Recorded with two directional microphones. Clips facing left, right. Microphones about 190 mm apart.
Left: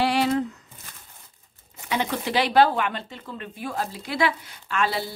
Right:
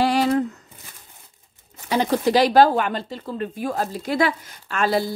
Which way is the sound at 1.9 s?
40° right (ahead or behind).